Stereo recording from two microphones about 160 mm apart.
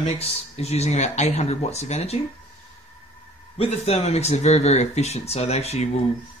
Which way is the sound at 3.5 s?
40° left (ahead or behind).